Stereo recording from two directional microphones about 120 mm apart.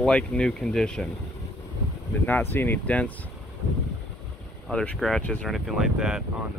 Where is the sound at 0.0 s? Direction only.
5° left (ahead or behind).